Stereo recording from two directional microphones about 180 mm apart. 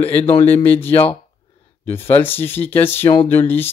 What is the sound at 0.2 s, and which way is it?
Speech, 35° left (ahead or behind).